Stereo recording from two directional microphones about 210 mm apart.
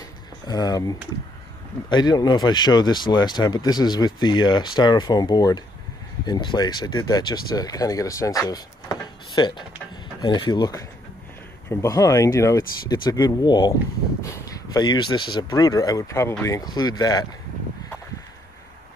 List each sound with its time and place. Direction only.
0.5 s speech: 15° left (ahead or behind)